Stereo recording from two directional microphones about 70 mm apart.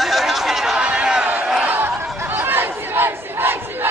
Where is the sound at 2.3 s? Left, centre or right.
Right.